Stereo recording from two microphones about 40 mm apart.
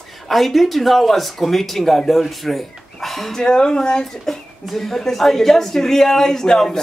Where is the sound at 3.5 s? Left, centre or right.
Left.